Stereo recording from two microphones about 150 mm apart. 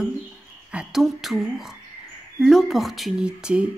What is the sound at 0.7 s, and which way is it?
Speech, 5° right (ahead or behind).